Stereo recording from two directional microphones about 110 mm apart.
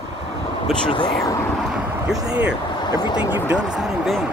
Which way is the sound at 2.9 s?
40° left (ahead or behind).